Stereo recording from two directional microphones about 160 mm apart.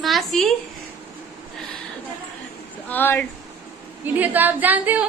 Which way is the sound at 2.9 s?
10° left (ahead or behind).